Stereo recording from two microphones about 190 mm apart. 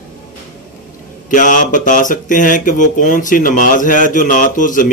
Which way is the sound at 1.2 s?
45° left (ahead or behind).